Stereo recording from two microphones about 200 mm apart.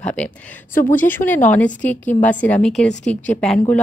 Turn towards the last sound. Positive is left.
turn(degrees=5)  # may be behind; listen again after turning